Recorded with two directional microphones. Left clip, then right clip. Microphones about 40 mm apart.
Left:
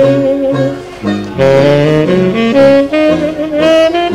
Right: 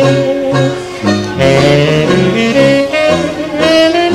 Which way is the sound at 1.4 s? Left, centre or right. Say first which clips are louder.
Left 2 dB; left.